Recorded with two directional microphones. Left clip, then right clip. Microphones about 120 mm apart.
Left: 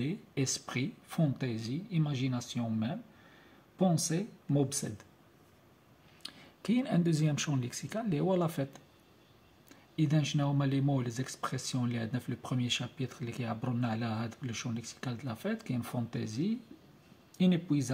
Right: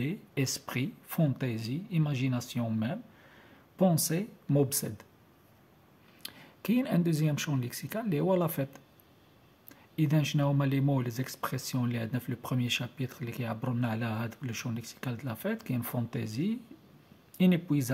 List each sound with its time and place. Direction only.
0.0 s speech: 30° right (ahead or behind)
6.2 s speech: 30° right (ahead or behind)
9.9 s speech: 35° right (ahead or behind)